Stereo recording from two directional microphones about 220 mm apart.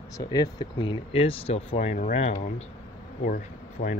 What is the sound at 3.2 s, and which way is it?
Speech, 40° left (ahead or behind).